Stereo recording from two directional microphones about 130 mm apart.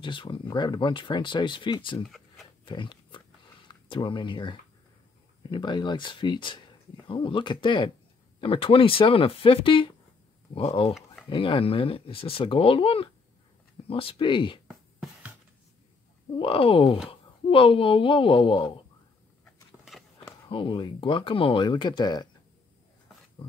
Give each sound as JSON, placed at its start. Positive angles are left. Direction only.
{"t": 0.0, "sound": "speech", "side_deg": 40}
{"t": 2.0, "sound": "a sound", "side_deg": 0}
{"t": 2.6, "sound": "pig", "side_deg": 40}
{"t": 3.6, "sound": "speech", "side_deg": 40}
{"t": 14.7, "sound": "music", "side_deg": -10}
{"t": 16.3, "sound": "speech", "side_deg": 45}
{"t": 20.4, "sound": "speech", "side_deg": 40}